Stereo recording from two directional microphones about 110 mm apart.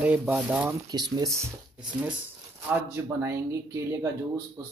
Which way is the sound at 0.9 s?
35° right (ahead or behind).